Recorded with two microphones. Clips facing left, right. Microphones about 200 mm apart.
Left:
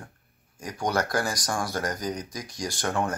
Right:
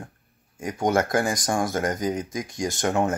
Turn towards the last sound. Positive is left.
turn(degrees=-20)  # may be behind; listen again after turning